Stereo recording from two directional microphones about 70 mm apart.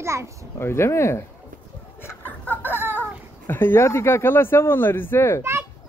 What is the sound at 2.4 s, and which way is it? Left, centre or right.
Speech, left.